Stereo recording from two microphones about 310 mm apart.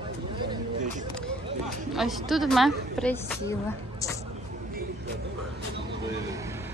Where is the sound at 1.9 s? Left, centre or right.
Centre.